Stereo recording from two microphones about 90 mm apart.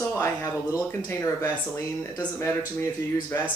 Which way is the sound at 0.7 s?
30° left (ahead or behind).